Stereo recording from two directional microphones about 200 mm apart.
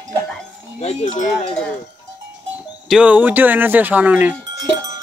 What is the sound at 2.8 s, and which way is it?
Speech, 5° right (ahead or behind).